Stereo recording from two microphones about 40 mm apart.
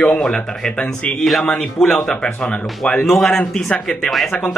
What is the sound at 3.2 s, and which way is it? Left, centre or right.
Speech, centre.